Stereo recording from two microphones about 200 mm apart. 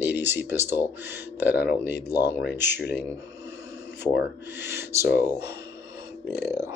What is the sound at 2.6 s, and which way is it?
Speech, 60° left (ahead or behind).